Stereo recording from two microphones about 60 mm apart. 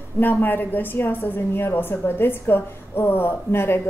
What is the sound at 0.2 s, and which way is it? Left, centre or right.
A woman's voice, left.